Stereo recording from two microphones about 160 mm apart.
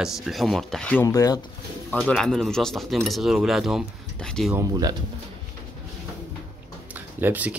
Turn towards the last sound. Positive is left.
turn(degrees=-10)  # may be behind; listen again after turning